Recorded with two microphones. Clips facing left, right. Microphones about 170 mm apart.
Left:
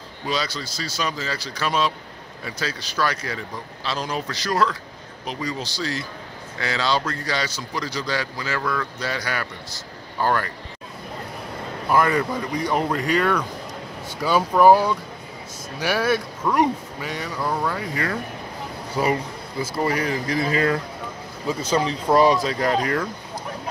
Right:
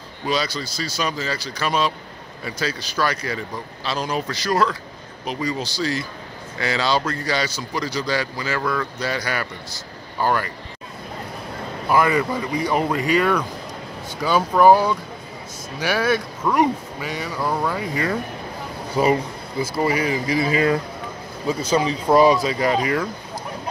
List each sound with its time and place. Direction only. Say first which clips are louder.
0.3 s speech: right 3 dB; 5° right (ahead or behind)
11.9 s speech: right 1 dB; 5° right (ahead or behind)
14.0 s speech: right 1 dB; 5° left (ahead or behind)